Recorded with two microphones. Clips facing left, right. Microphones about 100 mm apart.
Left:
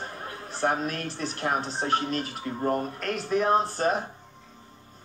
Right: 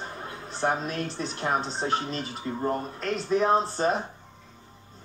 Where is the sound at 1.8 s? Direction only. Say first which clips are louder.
Left 2 dB; 50° left (ahead or behind).